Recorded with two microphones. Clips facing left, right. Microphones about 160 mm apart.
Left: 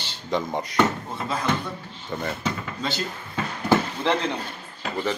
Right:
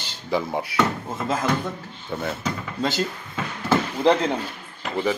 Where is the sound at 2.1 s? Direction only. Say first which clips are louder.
Right 1 dB; 5° right (ahead or behind).